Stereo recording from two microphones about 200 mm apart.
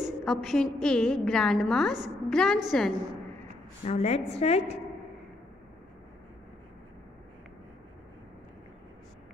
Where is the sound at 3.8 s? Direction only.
30° left (ahead or behind).